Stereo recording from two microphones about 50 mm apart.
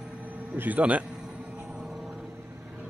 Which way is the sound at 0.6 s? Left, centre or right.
Right.